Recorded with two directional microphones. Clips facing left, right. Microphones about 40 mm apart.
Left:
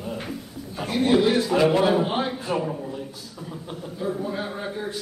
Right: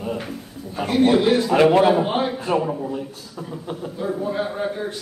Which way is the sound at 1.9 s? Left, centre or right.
Centre.